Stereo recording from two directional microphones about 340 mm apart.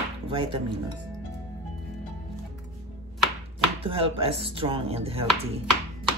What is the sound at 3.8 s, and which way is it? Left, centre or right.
Speech, centre.